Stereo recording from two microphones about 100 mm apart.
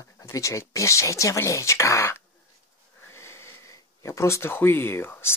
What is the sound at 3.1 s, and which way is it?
Wheeze, 25° left (ahead or behind).